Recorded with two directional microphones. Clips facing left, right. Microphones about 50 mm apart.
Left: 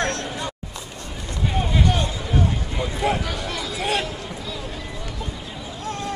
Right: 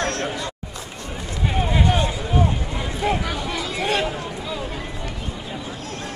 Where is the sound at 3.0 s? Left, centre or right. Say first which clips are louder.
Right 1 dB; centre.